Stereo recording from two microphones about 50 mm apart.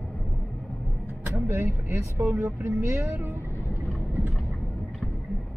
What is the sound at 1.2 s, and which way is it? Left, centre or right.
Speech, right.